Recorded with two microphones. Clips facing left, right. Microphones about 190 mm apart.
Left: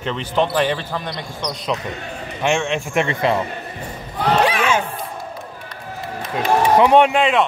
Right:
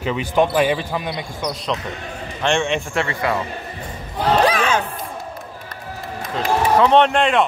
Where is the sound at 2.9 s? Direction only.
25° left (ahead or behind).